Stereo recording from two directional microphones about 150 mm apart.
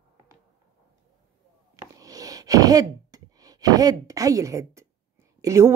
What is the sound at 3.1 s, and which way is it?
A woman's voice, 25° right (ahead or behind).